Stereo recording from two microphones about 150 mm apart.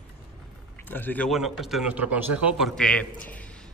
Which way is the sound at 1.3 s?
Centre (ahead or behind).